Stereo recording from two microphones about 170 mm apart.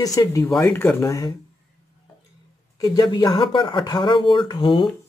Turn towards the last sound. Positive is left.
turn(degrees=25)  # may be behind; listen again after turning